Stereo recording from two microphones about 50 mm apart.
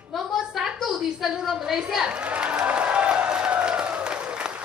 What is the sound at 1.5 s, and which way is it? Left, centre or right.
Speech, centre.